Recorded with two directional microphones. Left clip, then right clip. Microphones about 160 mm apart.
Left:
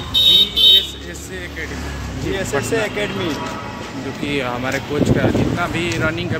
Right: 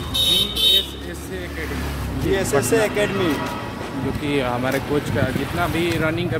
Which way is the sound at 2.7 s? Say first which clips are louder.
Right 2 dB; 80° right.